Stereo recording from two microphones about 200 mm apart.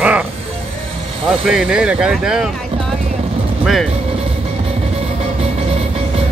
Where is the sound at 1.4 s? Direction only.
5° right (ahead or behind).